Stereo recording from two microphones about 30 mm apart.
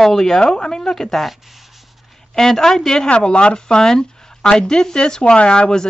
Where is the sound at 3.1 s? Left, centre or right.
Left.